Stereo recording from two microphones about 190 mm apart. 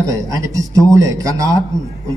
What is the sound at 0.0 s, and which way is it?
Speech, 20° right (ahead or behind).